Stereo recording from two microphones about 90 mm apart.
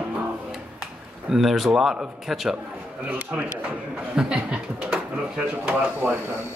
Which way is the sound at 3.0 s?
15° right (ahead or behind).